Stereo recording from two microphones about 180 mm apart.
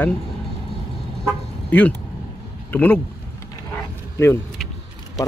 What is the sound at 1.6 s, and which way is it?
Speech, 10° left (ahead or behind).